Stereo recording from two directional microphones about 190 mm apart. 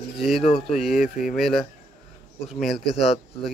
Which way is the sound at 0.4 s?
30° left (ahead or behind).